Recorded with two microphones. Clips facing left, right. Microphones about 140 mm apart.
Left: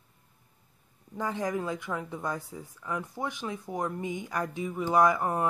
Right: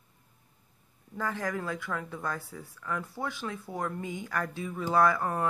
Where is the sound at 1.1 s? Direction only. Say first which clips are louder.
Left 2 dB; 20° left (ahead or behind).